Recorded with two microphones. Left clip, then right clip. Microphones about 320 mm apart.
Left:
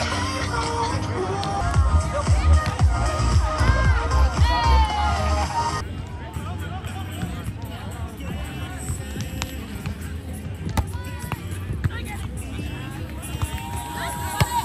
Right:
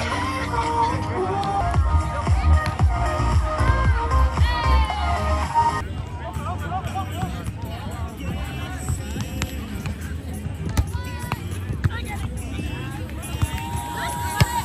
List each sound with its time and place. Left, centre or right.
0.1 s music: right
14.4 s music: centre